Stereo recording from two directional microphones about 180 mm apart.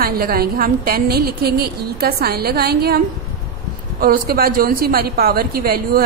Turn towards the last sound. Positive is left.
turn(degrees=-55)  # may be behind; listen again after turning